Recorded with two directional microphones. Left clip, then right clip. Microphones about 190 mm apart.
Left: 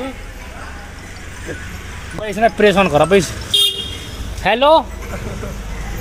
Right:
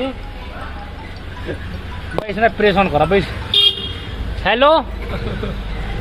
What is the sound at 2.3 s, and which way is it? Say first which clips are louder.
Speech: left 2 dB; 45° left (ahead or behind).